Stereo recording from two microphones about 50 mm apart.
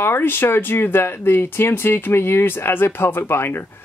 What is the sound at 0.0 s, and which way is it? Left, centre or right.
Speech, left.